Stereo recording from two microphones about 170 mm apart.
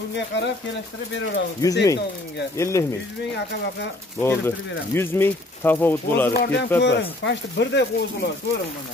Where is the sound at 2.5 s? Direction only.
15° left (ahead or behind).